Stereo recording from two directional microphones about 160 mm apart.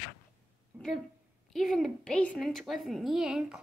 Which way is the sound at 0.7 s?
10° right (ahead or behind).